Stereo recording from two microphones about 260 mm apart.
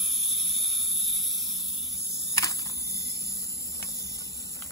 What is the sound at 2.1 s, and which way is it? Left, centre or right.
Typing, centre.